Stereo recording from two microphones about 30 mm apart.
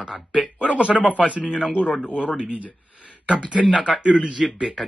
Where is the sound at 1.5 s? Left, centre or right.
Right.